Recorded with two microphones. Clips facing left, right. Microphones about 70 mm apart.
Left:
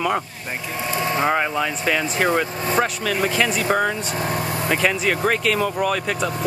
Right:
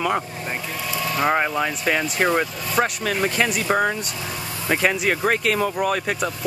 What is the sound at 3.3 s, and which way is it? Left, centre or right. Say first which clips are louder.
Speech: left 1 dB; centre.